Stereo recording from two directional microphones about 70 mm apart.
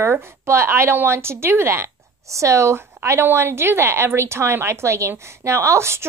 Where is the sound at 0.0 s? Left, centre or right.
Right.